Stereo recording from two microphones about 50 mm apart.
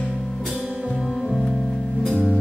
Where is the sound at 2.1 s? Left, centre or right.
Left.